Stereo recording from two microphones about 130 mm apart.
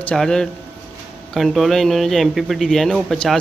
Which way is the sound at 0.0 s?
5° left (ahead or behind).